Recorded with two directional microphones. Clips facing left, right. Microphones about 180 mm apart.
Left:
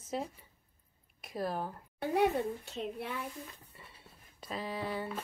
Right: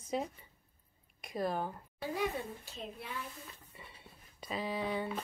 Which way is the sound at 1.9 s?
65° left (ahead or behind).